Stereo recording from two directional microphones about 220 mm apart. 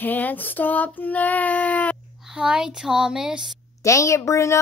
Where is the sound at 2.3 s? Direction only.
5° right (ahead or behind).